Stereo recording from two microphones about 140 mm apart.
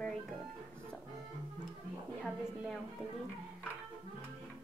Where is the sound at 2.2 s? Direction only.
5° left (ahead or behind).